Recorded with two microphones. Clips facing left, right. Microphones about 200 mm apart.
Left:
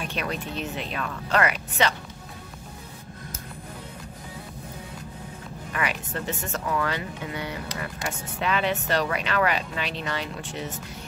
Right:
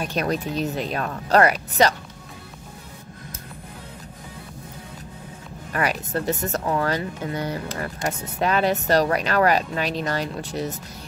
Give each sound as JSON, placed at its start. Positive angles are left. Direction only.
{"t": 0.0, "sound": "speech", "side_deg": -40}
{"t": 5.7, "sound": "speech", "side_deg": -40}